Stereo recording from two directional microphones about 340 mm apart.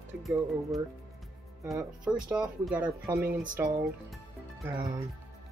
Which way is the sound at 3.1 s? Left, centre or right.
Right.